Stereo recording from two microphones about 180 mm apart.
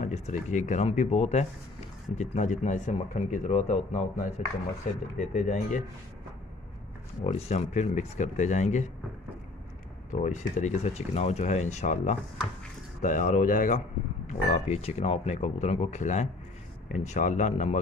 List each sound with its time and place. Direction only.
0.0 s speech: 40° left (ahead or behind)
7.2 s speech: 35° left (ahead or behind)
10.1 s speech: 40° left (ahead or behind)